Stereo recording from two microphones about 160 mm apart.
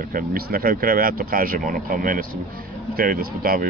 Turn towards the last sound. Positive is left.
turn(degrees=-65)  # may be behind; listen again after turning